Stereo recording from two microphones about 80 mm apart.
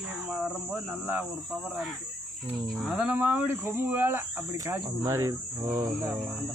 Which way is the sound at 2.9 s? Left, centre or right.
Centre.